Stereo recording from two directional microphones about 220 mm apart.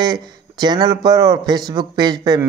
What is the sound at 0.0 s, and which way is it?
Speech, 20° right (ahead or behind).